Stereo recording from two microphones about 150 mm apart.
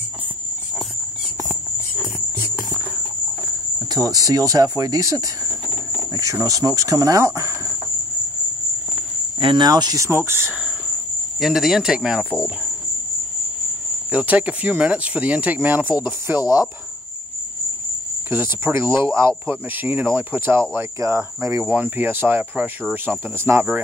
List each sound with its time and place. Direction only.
3.9 s speech: 25° right (ahead or behind)
9.4 s speech: 30° right (ahead or behind); by 10.7 s 15° right (ahead or behind)
11.3 s cricket: centre (ahead or behind)
14.1 s speech: 10° right (ahead or behind)
16.3 s speech: 25° left (ahead or behind)
18.3 s speech: 15° right (ahead or behind)